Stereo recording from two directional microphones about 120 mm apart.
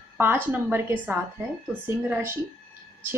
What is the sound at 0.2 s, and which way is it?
A woman's voice, 15° right (ahead or behind).